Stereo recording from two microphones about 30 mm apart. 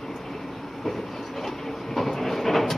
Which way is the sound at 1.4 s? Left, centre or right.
Centre.